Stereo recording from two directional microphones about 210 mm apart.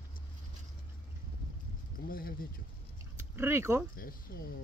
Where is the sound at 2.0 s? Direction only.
45° left (ahead or behind).